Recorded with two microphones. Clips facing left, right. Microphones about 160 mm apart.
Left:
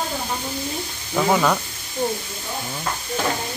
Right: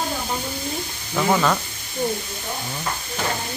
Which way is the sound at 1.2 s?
5° left (ahead or behind).